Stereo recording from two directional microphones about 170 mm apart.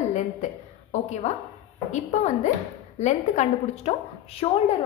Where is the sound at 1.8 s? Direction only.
45° left (ahead or behind).